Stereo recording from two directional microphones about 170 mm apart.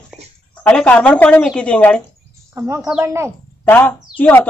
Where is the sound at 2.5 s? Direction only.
15° right (ahead or behind).